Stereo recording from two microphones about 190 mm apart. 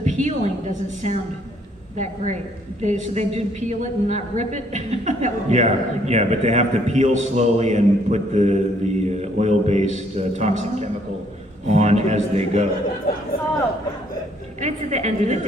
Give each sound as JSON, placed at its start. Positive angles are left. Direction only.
{"t": 0.0, "sound": "a woman's voice", "side_deg": -40}
{"t": 14.6, "sound": "a woman's voice", "side_deg": -35}